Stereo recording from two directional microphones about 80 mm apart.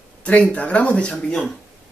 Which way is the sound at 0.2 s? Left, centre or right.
Centre.